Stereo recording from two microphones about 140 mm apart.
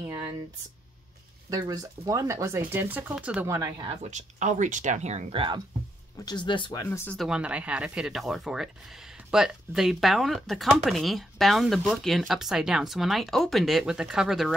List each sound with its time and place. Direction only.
1.5 s speech: 25° right (ahead or behind); by 3.4 s 10° right (ahead or behind)
3.4 s speech: 20° right (ahead or behind)
4.0 s speech: 60° right (ahead or behind)
6.2 s speech: 35° left (ahead or behind)
6.9 s speech: 15° left (ahead or behind)
7.2 s speech: 5° right (ahead or behind)